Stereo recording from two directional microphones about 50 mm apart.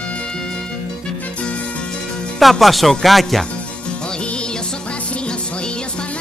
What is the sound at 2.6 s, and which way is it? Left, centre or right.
Speech, centre.